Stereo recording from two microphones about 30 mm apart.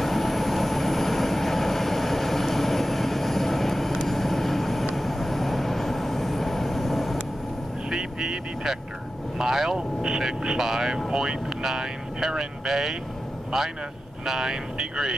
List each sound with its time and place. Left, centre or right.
0.0 s vehicle: centre
4.9 s train: centre
7.9 s vehicle: centre
9.4 s speech: centre